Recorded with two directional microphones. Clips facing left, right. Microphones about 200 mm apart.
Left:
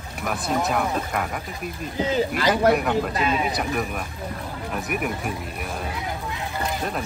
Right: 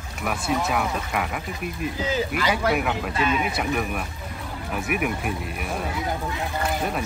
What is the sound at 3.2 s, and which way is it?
Speech, 35° left (ahead or behind).